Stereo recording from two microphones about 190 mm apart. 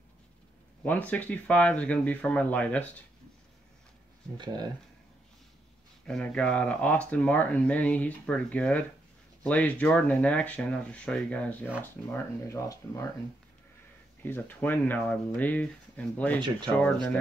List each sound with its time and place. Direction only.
0.8 s speech: 10° left (ahead or behind)
4.4 s speech: 20° right (ahead or behind)
6.0 s speech: 5° left (ahead or behind)
14.2 s speech: 10° left (ahead or behind)
16.3 s speech: 25° right (ahead or behind)
16.7 s speech: 5° left (ahead or behind)